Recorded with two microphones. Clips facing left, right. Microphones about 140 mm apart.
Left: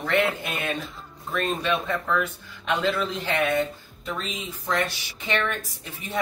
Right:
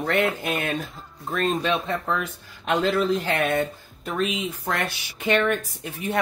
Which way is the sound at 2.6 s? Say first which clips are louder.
Right 3 dB; 45° right (ahead or behind).